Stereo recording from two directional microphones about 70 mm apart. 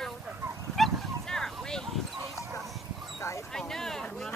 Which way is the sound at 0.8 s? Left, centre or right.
Centre.